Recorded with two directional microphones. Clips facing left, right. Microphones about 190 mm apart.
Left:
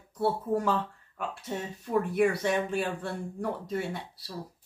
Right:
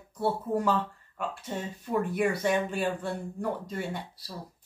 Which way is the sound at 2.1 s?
Centre (ahead or behind).